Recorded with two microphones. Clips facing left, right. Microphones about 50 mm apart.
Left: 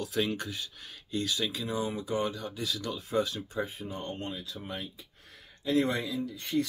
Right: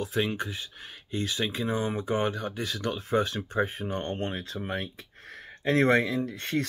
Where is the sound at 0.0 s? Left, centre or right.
Right.